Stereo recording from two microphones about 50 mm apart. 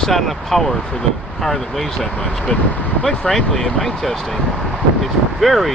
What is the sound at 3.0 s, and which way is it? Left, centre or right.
Speech, centre.